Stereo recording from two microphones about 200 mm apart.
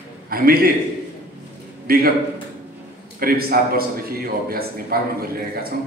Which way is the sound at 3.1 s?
50° right (ahead or behind).